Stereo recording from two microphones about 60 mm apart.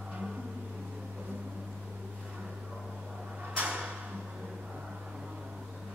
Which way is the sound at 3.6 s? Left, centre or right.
Centre.